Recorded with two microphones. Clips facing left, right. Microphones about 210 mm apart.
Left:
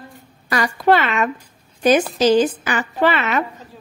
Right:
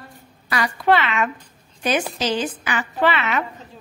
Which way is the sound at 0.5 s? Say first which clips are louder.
Left 3 dB; 45° left (ahead or behind).